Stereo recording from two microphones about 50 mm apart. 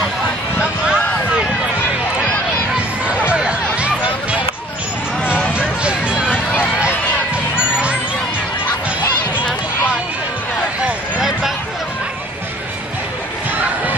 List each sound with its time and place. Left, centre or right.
0.6 s a sound: centre
3.3 s music: right
5.8 s music: right
6.3 s run: left